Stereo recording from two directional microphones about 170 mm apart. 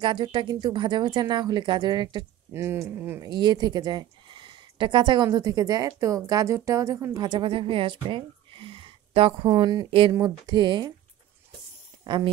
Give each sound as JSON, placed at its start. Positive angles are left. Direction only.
{"t": 0.0, "sound": "speech", "side_deg": -25}
{"t": 2.5, "sound": "speech", "side_deg": -15}
{"t": 3.2, "sound": "speech", "side_deg": -25}
{"t": 12.0, "sound": "speech", "side_deg": -25}